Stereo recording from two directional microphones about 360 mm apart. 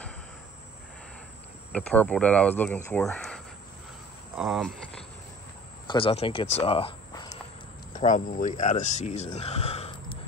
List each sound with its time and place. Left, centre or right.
1.7 s speech: centre
5.9 s speech: centre